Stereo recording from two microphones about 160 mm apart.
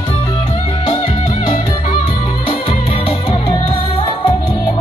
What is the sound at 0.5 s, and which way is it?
Music, 30° left (ahead or behind).